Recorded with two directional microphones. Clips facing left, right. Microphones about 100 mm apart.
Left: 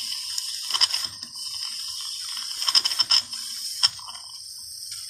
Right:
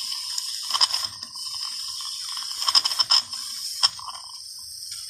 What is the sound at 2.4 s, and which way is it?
Ratchet, 15° right (ahead or behind).